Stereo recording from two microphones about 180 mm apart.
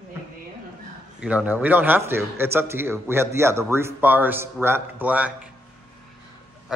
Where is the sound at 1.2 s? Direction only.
5° right (ahead or behind).